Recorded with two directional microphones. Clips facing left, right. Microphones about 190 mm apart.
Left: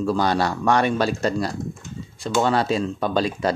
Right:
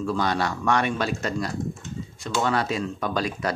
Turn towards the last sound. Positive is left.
turn(degrees=30)  # may be behind; listen again after turning